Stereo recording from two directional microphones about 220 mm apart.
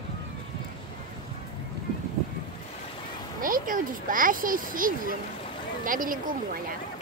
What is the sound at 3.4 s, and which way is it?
Speech, 40° right (ahead or behind).